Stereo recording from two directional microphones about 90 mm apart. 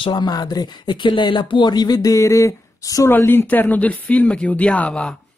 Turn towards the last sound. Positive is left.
turn(degrees=10)  # may be behind; listen again after turning